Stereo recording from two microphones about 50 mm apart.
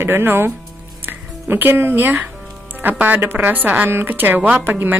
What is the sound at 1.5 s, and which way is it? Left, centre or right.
A woman's voice, right.